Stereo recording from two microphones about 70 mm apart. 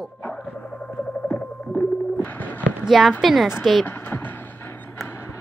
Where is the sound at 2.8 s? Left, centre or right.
Centre.